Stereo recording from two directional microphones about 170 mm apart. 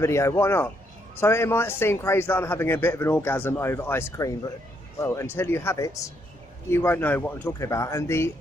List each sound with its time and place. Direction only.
0.0 s a man's voice: 15° left (ahead or behind)